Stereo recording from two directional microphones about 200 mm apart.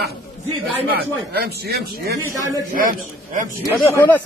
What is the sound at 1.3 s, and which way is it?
Speech, 55° right (ahead or behind).